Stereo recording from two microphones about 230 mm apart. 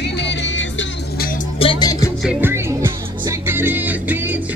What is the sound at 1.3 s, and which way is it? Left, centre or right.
Music, left.